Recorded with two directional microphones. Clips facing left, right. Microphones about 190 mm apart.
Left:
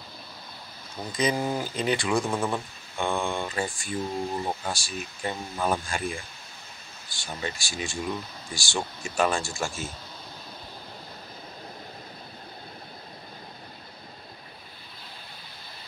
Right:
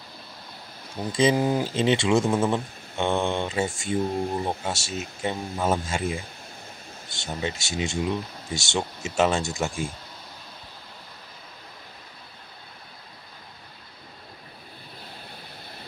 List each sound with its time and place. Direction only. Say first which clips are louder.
1.0 s speech: right 5 dB; 15° right (ahead or behind)
1.6 s speech: right 5 dB; 25° right (ahead or behind)